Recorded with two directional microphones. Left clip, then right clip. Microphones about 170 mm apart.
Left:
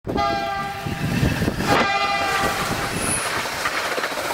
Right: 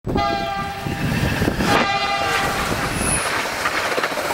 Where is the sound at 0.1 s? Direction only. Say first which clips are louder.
Right 1 dB; centre (ahead or behind).